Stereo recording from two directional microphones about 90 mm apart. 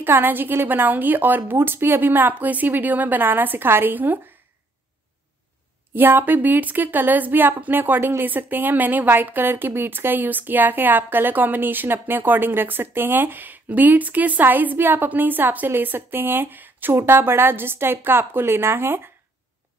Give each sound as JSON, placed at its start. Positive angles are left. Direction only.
{"t": 0.0, "sound": "a woman's voice", "side_deg": -20}
{"t": 5.9, "sound": "a woman's voice", "side_deg": -20}